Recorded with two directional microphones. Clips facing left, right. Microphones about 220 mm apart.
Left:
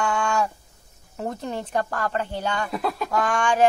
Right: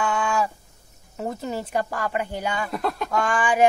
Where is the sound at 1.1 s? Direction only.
5° right (ahead or behind).